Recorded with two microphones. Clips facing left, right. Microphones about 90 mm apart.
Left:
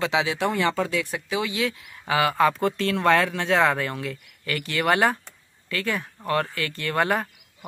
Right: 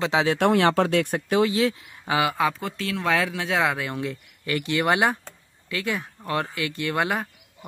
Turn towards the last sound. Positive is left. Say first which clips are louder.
# left 1 dB
turn(degrees=-10)  # may be behind; listen again after turning